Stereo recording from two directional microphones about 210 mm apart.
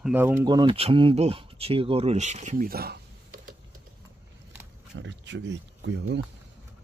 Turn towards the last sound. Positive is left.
turn(degrees=-60)  # may be behind; listen again after turning